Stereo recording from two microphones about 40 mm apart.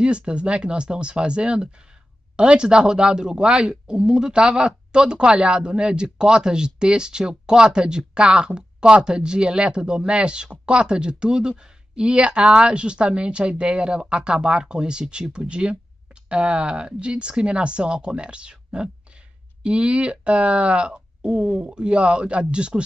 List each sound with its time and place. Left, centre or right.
0.0 s speech: right